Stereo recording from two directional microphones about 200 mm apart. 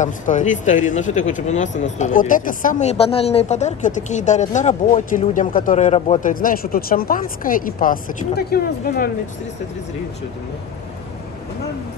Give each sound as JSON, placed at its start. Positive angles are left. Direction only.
{"t": 0.0, "sound": "speech", "side_deg": 40}
{"t": 6.4, "sound": "speech", "side_deg": 45}